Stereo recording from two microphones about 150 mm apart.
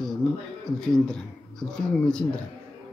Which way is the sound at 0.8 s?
5° left (ahead or behind).